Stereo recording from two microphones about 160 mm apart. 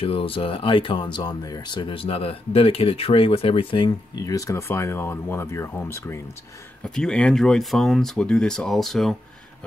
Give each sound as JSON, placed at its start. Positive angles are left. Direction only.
{"t": 0.0, "sound": "speech", "side_deg": 35}